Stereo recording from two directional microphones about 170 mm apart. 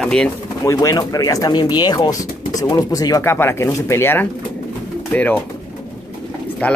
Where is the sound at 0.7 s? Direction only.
20° left (ahead or behind).